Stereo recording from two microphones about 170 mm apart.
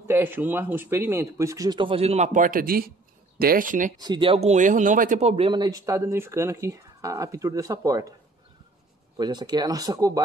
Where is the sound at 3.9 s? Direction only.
25° right (ahead or behind).